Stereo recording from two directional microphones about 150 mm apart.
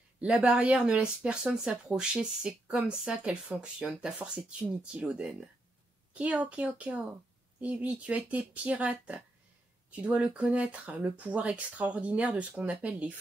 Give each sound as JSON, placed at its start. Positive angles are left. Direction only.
{"t": 0.2, "sound": "speech", "side_deg": -10}